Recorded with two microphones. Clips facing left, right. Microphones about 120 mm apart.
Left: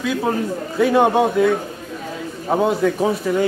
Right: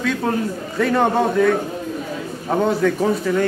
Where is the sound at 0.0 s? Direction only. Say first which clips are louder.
Even; 5° left (ahead or behind).